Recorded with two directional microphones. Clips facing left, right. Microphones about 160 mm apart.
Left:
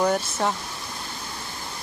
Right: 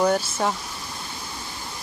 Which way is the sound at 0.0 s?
Centre (ahead or behind).